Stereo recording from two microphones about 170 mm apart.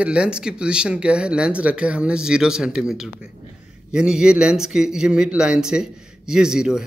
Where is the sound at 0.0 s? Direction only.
5° right (ahead or behind).